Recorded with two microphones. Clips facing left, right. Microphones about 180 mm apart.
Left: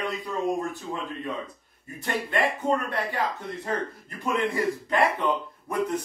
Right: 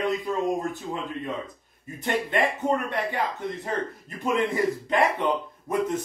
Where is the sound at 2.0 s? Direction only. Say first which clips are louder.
Right 2 dB; 20° right (ahead or behind).